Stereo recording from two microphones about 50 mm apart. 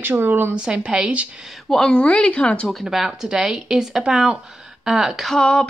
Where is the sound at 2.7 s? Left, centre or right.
Centre.